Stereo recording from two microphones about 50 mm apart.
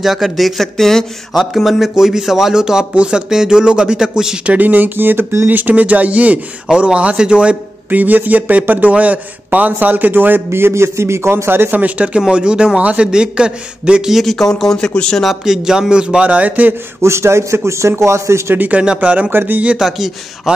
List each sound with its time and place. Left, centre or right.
0.0 s speech: centre
4.5 s a man's voice: right
7.9 s a man's voice: right
11.7 s a man's voice: right
14.2 s speech: centre
15.2 s a man's voice: centre; by 16.7 s right
17.0 s a man's voice: right
18.7 s a man's voice: right
19.8 s speech: centre